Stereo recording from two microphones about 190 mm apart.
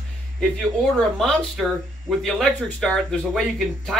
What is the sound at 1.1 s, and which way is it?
Speech, centre (ahead or behind).